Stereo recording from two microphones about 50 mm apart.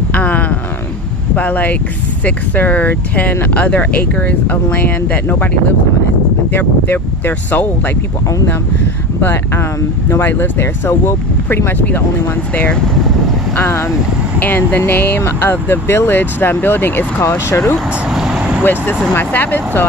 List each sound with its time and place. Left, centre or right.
0.1 s a sound: left
1.3 s speech: left
5.3 s speech: left
6.9 s speech: left
9.2 s speech: left
14.4 s speech: left
17.5 s speech: left
17.7 s speech: centre
18.6 s speech: left